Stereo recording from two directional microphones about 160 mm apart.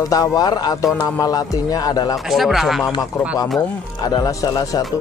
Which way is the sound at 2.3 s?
Centre (ahead or behind).